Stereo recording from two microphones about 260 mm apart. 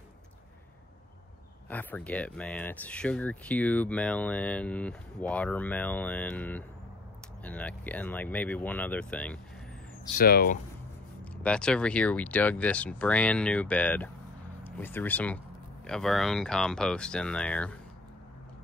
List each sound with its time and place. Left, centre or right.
1.7 s speech: centre
10.1 s speech: left
11.4 s speech: centre